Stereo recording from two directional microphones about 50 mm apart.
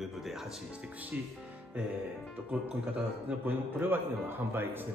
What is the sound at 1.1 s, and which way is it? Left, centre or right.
Speech, right.